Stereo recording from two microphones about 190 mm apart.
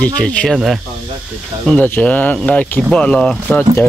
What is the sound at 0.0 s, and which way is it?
Speech, 5° left (ahead or behind).